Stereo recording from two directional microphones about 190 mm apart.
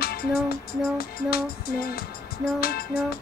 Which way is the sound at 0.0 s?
55° left (ahead or behind).